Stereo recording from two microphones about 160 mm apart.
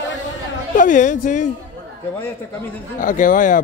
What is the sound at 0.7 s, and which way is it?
Speech, 55° left (ahead or behind).